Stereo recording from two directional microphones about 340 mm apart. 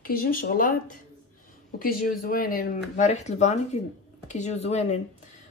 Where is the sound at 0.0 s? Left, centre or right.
Left.